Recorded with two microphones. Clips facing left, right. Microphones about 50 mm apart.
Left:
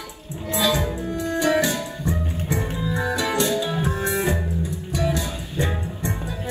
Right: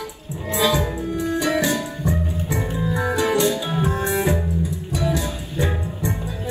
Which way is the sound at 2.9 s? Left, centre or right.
Right.